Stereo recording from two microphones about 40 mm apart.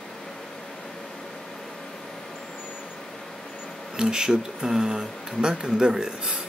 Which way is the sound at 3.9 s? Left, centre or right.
Centre.